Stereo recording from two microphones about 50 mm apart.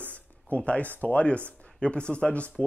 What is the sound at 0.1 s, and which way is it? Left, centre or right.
Speech, left.